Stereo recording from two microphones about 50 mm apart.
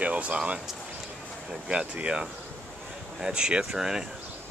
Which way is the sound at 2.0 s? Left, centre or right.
Centre.